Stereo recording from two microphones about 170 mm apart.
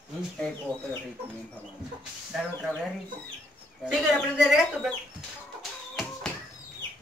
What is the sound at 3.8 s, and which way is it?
Speech, 5° right (ahead or behind).